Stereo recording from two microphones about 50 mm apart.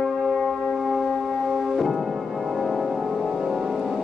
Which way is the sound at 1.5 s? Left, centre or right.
Centre.